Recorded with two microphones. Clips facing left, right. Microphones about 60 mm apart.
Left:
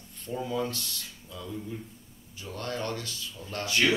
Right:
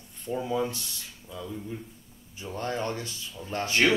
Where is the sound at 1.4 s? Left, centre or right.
Centre.